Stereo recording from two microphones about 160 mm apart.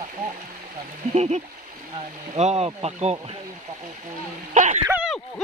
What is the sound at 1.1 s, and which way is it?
Speech, 45° right (ahead or behind).